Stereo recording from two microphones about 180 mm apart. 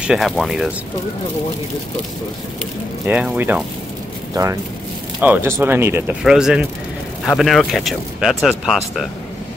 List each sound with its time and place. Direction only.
0.0 s speech: centre (ahead or behind)
3.1 s speech: 10° right (ahead or behind)